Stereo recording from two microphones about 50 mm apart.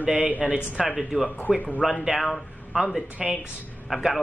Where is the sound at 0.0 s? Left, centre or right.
Right.